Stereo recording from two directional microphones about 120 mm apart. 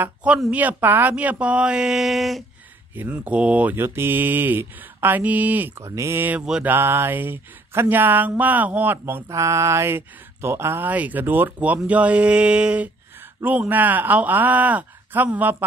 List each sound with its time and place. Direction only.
0.0 s speech: 10° right (ahead or behind)
2.9 s speech: 15° right (ahead or behind)
5.9 s speech: 25° right (ahead or behind)